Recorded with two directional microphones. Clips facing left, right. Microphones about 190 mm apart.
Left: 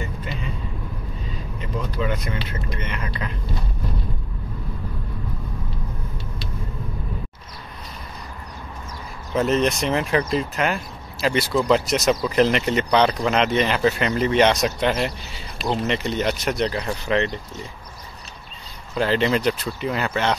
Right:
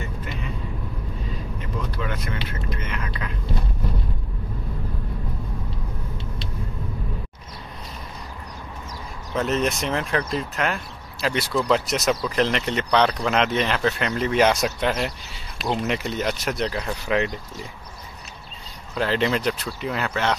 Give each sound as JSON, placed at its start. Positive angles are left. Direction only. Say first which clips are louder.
{"t": 1.6, "sound": "vehicle", "louder": "left 5 dB", "side_deg": 5}
{"t": 2.7, "sound": "whispering", "louder": "left 1 dB", "side_deg": -5}
{"t": 9.3, "sound": "speech", "louder": "left 3 dB", "side_deg": 0}
{"t": 18.9, "sound": "speech", "louder": "left 2 dB", "side_deg": 0}